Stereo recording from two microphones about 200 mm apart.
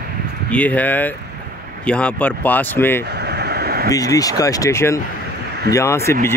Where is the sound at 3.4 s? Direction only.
55° right (ahead or behind).